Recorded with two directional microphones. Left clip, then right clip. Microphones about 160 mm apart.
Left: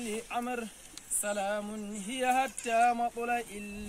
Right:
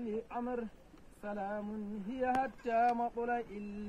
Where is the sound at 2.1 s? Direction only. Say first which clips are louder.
Left 5 dB; 45° left (ahead or behind).